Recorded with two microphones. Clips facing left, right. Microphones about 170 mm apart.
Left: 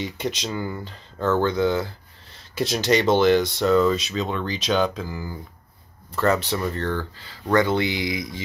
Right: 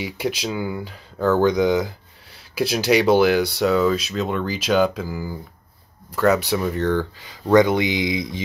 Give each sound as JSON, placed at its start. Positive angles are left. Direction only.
{"t": 0.0, "sound": "speech", "side_deg": -5}